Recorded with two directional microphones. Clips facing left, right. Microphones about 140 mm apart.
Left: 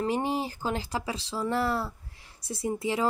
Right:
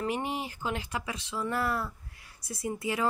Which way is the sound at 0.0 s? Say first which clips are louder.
Left 4 dB; 35° left (ahead or behind).